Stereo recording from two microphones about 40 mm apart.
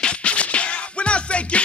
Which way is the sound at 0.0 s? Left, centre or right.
Left.